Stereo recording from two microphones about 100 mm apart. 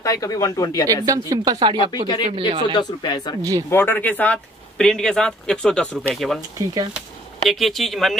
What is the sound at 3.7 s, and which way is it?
Speech, 20° left (ahead or behind).